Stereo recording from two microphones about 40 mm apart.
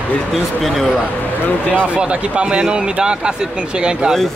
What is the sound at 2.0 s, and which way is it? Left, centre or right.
Speech, right.